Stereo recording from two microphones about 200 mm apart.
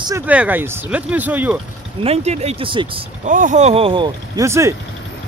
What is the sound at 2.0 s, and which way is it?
Speech, 35° right (ahead or behind).